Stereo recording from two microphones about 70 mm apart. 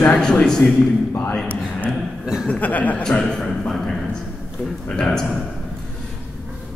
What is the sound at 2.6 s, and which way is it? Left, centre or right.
Speech, left.